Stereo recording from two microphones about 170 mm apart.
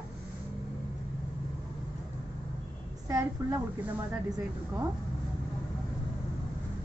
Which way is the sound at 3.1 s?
15° right (ahead or behind).